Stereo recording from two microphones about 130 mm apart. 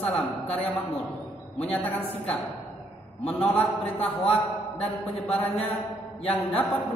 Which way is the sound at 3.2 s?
10° left (ahead or behind).